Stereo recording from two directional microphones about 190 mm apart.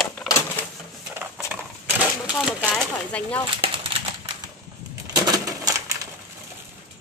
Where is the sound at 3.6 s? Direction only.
30° right (ahead or behind).